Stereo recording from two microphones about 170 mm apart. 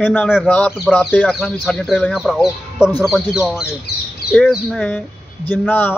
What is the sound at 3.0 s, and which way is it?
Speech, 5° right (ahead or behind).